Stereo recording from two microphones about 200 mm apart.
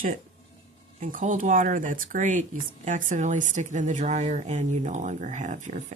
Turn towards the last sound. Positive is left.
turn(degrees=-40)  # may be behind; listen again after turning